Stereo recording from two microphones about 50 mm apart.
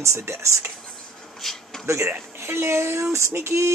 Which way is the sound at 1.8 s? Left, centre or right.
Right.